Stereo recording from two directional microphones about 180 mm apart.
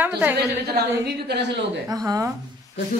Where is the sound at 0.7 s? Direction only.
65° right (ahead or behind).